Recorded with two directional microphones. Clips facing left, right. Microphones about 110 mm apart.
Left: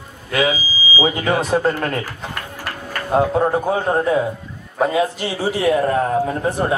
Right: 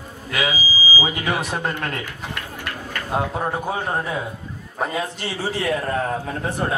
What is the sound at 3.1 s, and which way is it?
A man's voice, 15° left (ahead or behind).